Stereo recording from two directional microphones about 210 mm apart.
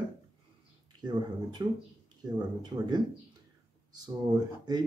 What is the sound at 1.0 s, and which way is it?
Speech, 20° right (ahead or behind).